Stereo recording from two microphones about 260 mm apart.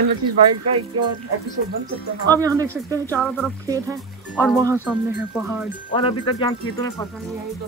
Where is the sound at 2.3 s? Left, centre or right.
Centre.